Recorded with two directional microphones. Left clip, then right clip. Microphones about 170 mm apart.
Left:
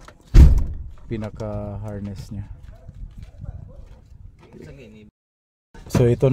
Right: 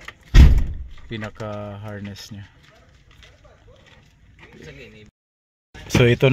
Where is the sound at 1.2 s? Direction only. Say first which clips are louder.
Right 1 dB; 15° left (ahead or behind).